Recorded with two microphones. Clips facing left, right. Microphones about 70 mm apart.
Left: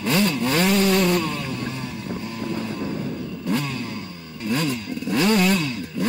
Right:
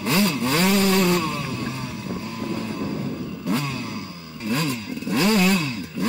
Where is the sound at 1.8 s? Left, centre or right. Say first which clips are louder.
Even; left.